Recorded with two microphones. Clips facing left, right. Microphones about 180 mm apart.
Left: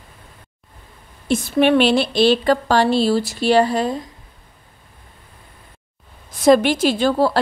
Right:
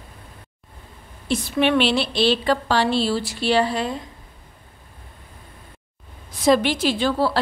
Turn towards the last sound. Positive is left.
turn(degrees=45)  # may be behind; listen again after turning